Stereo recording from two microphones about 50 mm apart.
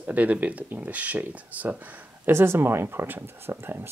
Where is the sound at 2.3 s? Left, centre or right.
Right.